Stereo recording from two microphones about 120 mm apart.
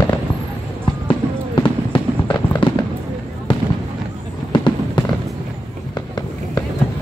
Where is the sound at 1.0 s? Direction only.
45° left (ahead or behind).